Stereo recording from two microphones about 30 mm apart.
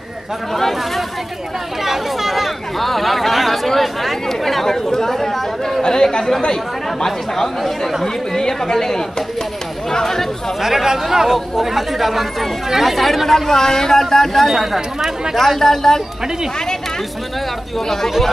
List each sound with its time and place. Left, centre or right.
0.6 s speech: centre
1.9 s speech: centre
4.6 s speech: centre
5.8 s speech: left
7.1 s speech: centre
10.6 s speech: centre
11.3 s speech: centre
13.5 s speech: centre
14.5 s speech: centre
15.3 s speech: centre